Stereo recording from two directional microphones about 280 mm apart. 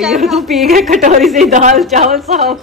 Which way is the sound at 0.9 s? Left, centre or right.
Right.